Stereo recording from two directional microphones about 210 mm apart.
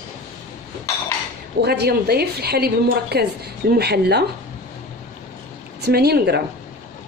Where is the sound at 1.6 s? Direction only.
50° right (ahead or behind).